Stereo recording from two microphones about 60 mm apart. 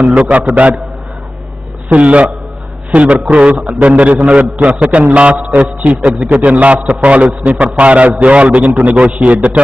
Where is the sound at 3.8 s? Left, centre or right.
Right.